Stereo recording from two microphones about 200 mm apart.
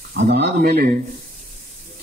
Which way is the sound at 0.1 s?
60° right (ahead or behind).